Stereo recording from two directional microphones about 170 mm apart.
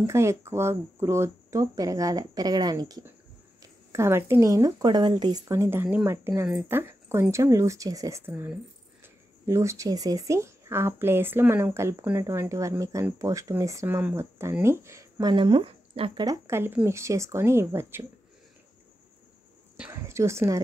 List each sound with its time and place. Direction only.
0.0 s speech: 15° right (ahead or behind); by 16.3 s 30° right (ahead or behind)
16.3 s speech: 15° right (ahead or behind)
19.8 s speech: 15° right (ahead or behind)